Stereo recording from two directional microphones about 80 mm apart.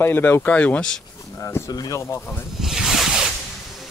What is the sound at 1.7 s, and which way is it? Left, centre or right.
Speech, left.